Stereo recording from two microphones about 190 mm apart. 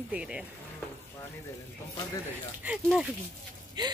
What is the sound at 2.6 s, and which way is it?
Speech, 10° right (ahead or behind).